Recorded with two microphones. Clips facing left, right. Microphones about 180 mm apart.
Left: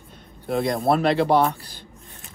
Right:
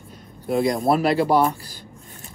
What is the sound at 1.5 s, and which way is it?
Speech, 55° left (ahead or behind).